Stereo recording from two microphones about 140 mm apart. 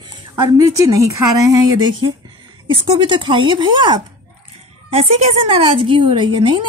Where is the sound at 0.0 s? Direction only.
25° right (ahead or behind).